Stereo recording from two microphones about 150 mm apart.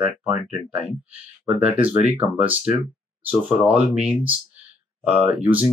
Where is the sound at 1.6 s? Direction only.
10° right (ahead or behind).